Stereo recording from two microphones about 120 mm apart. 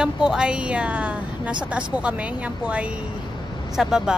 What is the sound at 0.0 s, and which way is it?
Speech, 5° right (ahead or behind).